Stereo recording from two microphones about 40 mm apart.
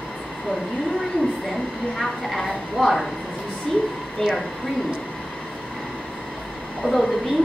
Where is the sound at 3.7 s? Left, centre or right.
Centre.